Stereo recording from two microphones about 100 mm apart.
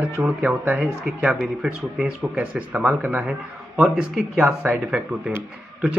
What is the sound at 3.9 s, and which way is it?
A man's voice, centre (ahead or behind).